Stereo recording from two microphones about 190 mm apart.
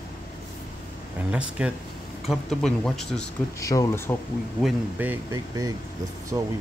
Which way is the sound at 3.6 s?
15° left (ahead or behind).